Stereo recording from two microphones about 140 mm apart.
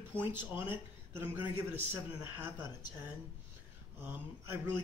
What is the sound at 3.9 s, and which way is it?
Speech, 15° right (ahead or behind).